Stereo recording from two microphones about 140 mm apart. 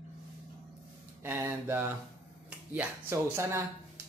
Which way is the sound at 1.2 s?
15° right (ahead or behind).